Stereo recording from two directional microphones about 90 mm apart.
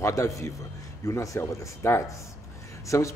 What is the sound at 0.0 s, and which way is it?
Speech, 35° left (ahead or behind).